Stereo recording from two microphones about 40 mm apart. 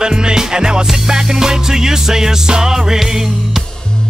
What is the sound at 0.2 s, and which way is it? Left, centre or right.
Music, centre.